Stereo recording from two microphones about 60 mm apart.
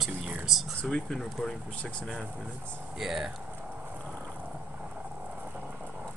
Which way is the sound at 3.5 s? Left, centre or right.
Right.